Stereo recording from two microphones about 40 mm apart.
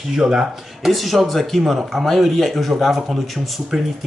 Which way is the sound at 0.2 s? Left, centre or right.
Centre.